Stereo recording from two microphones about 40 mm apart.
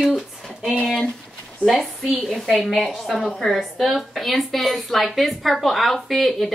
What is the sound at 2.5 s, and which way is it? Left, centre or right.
A child's voice, centre.